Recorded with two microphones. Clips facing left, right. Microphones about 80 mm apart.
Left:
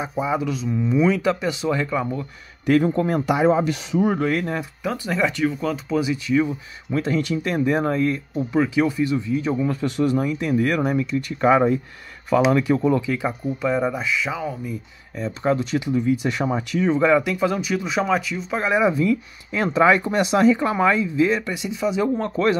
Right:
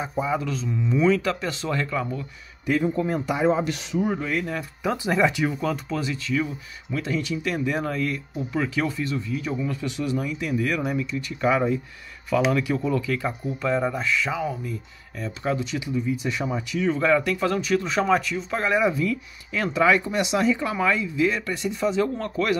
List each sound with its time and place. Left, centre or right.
0.1 s speech: centre
2.6 s a man's voice: left
4.9 s speech: centre
5.9 s speech: centre
6.9 s speech: left
8.5 s speech: centre
13.6 s speech: centre
15.1 s speech: left
15.5 s speech: left
17.0 s speech: centre
18.6 s speech: centre
21.4 s speech: centre
21.6 s speech: centre
21.9 s speech: centre